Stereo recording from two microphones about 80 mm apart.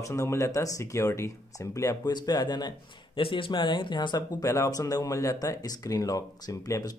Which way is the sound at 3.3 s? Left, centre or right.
Left.